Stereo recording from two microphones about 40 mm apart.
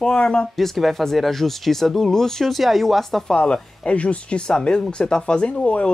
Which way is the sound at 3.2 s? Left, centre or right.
Left.